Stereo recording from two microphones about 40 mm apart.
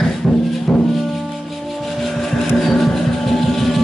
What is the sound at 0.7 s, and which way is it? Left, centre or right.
Music, left.